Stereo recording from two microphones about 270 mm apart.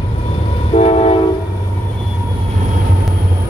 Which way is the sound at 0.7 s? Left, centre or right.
Left.